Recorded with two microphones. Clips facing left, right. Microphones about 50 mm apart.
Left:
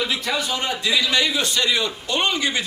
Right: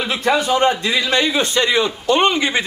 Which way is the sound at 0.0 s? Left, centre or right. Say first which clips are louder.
Right 6 dB; right.